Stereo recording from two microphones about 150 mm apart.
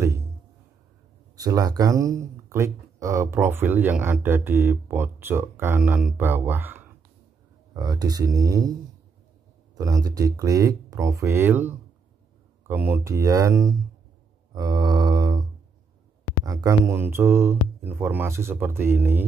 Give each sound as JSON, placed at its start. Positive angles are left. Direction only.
{"t": 1.3, "sound": "speech", "side_deg": -25}
{"t": 7.7, "sound": "speech", "side_deg": -25}
{"t": 9.8, "sound": "speech", "side_deg": -25}
{"t": 16.4, "sound": "speech", "side_deg": -20}